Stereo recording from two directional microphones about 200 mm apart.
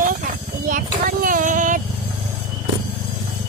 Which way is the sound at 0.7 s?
45° right (ahead or behind).